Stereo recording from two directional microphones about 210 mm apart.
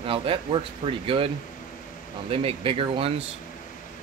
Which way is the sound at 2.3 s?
25° right (ahead or behind).